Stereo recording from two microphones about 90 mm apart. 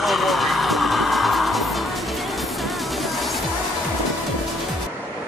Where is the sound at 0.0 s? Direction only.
Centre (ahead or behind).